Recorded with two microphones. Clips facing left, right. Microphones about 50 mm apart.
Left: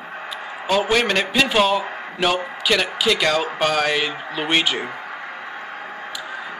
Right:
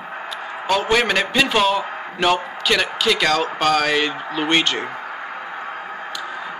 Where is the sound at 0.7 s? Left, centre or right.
Centre.